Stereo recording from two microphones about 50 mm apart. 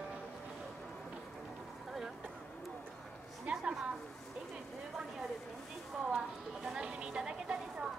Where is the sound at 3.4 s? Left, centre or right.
Centre.